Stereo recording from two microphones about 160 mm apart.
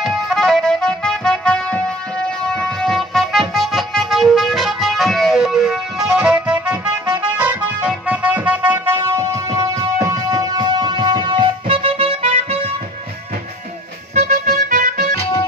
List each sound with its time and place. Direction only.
0.0 s music: centre (ahead or behind); by 12.7 s 40° right (ahead or behind)
14.1 s music: 50° right (ahead or behind)
15.1 s music: 40° left (ahead or behind)